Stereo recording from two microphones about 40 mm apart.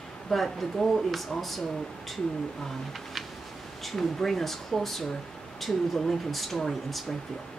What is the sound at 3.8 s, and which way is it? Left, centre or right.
Speech, centre.